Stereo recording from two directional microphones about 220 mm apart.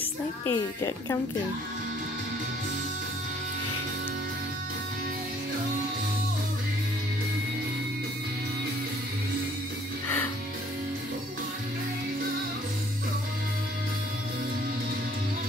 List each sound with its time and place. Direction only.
0.5 s speech: 15° left (ahead or behind)